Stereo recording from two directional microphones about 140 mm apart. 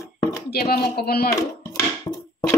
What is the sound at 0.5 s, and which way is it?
Speech, 90° left.